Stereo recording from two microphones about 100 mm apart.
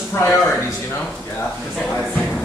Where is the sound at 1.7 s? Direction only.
5° left (ahead or behind).